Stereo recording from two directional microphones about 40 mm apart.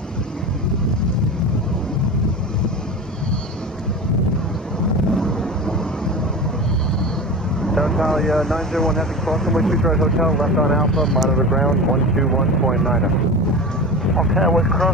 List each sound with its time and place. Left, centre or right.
5.1 s vehicle: centre
7.6 s speech: centre
14.1 s speech: centre